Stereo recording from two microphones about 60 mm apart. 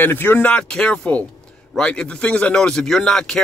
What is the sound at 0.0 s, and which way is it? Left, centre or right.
Speech, left.